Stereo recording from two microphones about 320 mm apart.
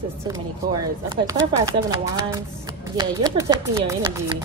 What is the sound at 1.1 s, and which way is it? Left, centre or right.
Speech, centre.